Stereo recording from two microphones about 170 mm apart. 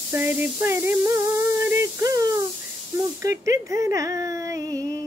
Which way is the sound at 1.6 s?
20° right (ahead or behind).